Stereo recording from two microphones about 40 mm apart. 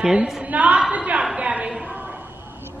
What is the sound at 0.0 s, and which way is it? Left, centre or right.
Speech, centre.